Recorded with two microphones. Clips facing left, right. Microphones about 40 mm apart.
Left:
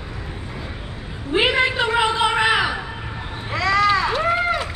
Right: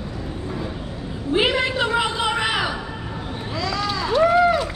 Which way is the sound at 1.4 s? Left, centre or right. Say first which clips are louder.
Left 2 dB; centre.